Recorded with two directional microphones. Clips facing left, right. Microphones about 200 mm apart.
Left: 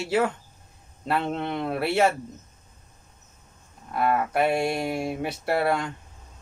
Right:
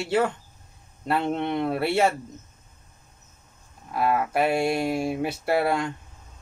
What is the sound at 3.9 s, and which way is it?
Speech, centre (ahead or behind).